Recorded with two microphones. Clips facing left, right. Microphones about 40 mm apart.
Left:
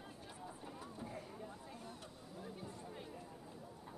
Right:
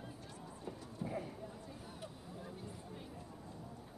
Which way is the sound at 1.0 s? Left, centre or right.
Centre.